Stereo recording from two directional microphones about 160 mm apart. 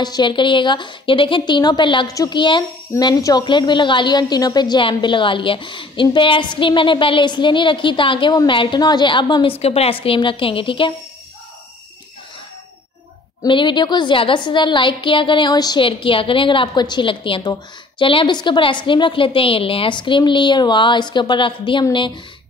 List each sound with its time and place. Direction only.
0.0 s a woman's voice: 25° left (ahead or behind)
13.4 s a woman's voice: 30° left (ahead or behind)